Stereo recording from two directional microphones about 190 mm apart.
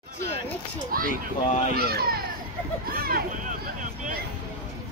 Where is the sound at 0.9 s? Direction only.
50° right (ahead or behind).